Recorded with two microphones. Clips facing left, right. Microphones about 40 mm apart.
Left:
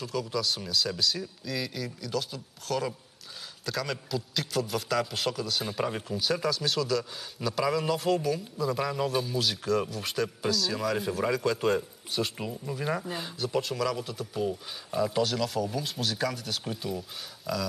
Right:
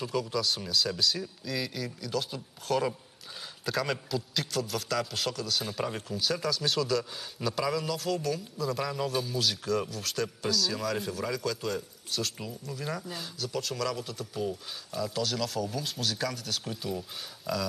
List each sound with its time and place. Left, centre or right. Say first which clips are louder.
0.0 s a man's voice: even; centre
7.8 s a man's voice: left 4 dB; centre
14.9 s speech: left 5 dB; left
15.2 s a man's voice: left 2 dB; centre